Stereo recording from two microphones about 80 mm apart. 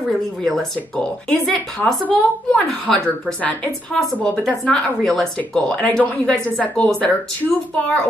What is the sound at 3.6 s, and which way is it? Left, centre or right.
Speech, centre.